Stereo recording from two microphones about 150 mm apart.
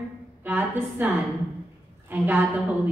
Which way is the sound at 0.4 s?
10° right (ahead or behind).